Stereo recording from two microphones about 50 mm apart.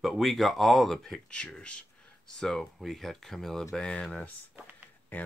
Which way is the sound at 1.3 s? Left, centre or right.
Centre.